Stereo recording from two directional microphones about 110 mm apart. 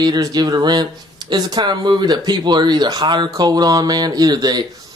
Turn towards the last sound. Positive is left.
turn(degrees=-40)  # may be behind; listen again after turning